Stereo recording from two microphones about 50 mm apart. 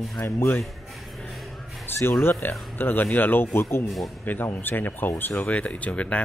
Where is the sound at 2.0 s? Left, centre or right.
Left.